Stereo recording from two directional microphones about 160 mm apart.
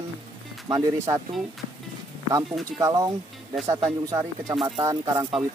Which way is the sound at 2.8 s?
20° right (ahead or behind).